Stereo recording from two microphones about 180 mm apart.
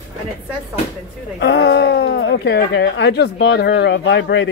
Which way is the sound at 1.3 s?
70° left (ahead or behind).